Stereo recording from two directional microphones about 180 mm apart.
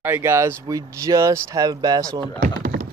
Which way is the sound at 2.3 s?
50° right (ahead or behind).